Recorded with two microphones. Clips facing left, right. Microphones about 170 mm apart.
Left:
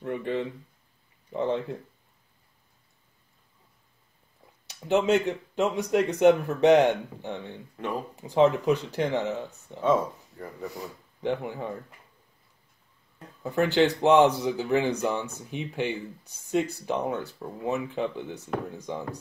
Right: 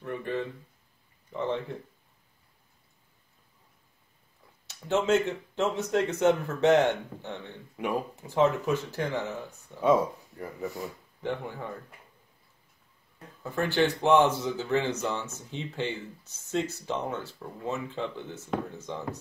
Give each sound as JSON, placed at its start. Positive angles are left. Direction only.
{"t": 0.0, "sound": "speech", "side_deg": 20}
{"t": 4.6, "sound": "speech", "side_deg": 15}
{"t": 7.7, "sound": "speech", "side_deg": -10}
{"t": 8.2, "sound": "speech", "side_deg": 20}
{"t": 10.3, "sound": "speech", "side_deg": 0}
{"t": 11.2, "sound": "speech", "side_deg": 15}
{"t": 13.4, "sound": "speech", "side_deg": 20}